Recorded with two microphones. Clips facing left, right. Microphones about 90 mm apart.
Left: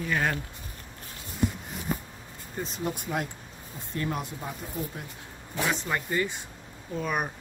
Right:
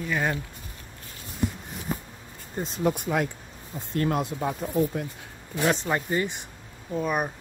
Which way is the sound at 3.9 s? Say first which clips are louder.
Right 6 dB; 60° right (ahead or behind).